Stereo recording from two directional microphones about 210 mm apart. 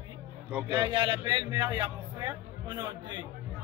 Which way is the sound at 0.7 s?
25° right (ahead or behind).